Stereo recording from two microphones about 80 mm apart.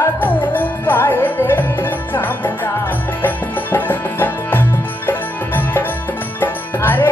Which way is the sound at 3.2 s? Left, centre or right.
Left.